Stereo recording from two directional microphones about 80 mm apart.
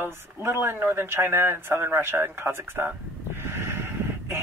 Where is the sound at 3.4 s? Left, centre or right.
Right.